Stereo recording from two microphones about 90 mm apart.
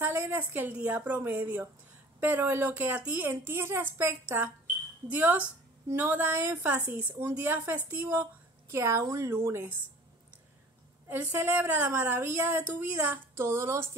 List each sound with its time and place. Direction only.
0.0 s speech: 25° right (ahead or behind)
11.3 s speech: 25° right (ahead or behind)